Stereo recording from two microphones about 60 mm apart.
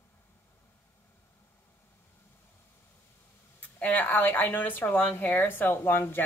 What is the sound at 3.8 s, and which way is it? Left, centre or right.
A woman's voice, left.